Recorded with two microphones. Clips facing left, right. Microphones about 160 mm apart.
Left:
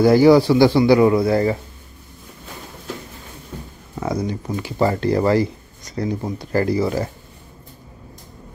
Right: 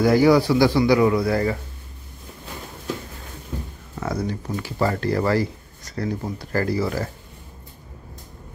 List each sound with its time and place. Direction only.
0.0 s speech: 30° left (ahead or behind)
4.0 s speech: 15° left (ahead or behind)